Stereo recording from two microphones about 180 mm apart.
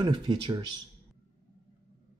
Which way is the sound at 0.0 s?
25° right (ahead or behind).